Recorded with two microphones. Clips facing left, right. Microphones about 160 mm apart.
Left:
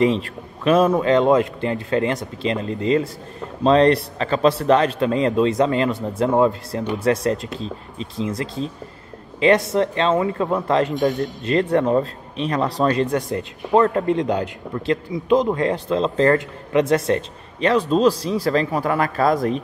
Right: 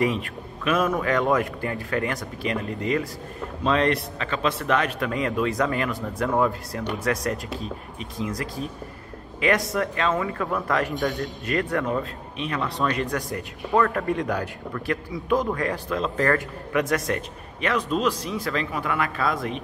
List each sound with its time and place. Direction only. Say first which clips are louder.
0.7 s a man's voice: left 7 dB; 30° left (ahead or behind)